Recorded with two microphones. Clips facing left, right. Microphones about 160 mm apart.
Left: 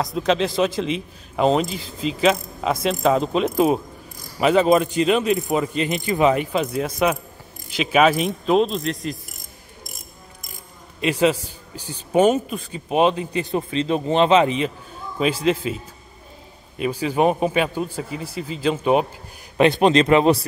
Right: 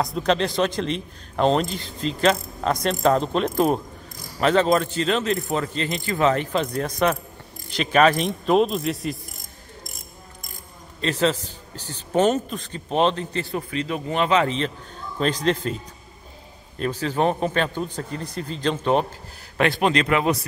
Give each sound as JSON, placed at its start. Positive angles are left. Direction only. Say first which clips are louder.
{"t": 0.0, "sound": "a man's voice", "louder": "left 1 dB", "side_deg": 0}
{"t": 11.0, "sound": "a man's voice", "louder": "left 3 dB", "side_deg": 10}
{"t": 19.5, "sound": "speech", "louder": "left 5 dB", "side_deg": 20}